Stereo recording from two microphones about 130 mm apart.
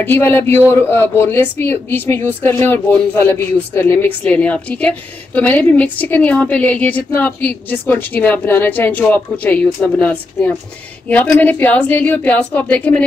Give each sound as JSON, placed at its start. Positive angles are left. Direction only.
{"t": 0.0, "sound": "speech", "side_deg": 15}